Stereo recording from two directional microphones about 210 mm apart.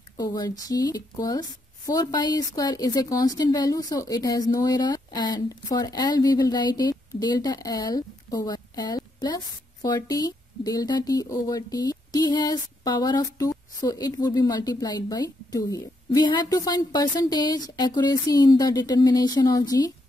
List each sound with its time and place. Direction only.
0.2 s a woman's voice: 20° left (ahead or behind)